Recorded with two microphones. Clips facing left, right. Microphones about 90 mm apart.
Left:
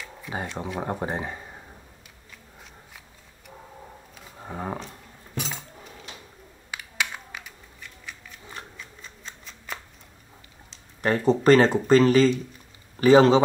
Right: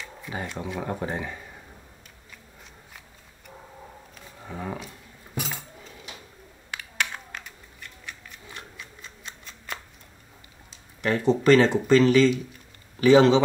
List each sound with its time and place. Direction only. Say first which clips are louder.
0.7 s speech: left 1 dB; 25° left (ahead or behind)
4.4 s speech: left 2 dB; 30° left (ahead or behind)
5.3 s chink: even; 5° right (ahead or behind)
6.7 s a sound: even; 5° left (ahead or behind)
11.0 s speech: left 1 dB; 40° left (ahead or behind)